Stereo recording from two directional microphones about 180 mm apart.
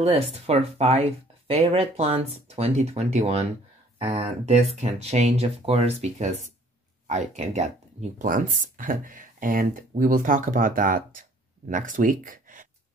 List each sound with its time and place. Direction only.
0.0 s speech: 35° right (ahead or behind)